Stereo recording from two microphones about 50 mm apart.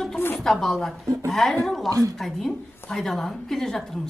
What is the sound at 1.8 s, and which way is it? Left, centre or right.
Speech, right.